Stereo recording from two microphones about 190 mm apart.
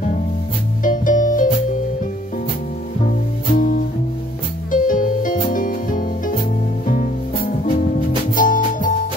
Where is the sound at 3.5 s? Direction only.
45° left (ahead or behind).